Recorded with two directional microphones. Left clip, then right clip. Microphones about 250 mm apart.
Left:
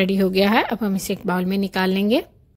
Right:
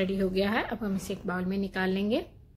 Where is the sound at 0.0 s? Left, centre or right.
Left.